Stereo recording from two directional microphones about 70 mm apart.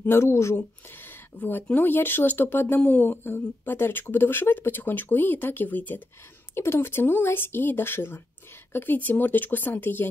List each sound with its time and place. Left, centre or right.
0.0 s speech: left
0.8 s speech: left
6.5 s speech: left